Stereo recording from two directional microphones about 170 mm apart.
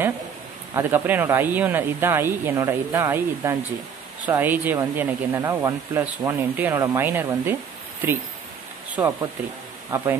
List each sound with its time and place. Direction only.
0.7 s speech: 10° right (ahead or behind)
9.0 s speech: 15° right (ahead or behind)